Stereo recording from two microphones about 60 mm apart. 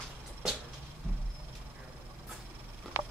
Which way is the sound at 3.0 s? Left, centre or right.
Right.